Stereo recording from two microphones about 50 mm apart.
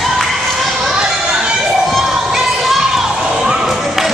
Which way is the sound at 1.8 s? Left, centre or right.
Centre.